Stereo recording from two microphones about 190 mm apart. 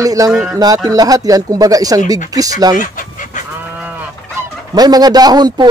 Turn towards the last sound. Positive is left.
turn(degrees=-20)  # may be behind; listen again after turning